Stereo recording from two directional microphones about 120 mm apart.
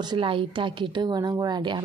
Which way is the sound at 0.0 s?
45° right (ahead or behind).